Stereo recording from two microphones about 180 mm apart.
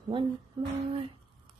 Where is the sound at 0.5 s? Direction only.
25° right (ahead or behind).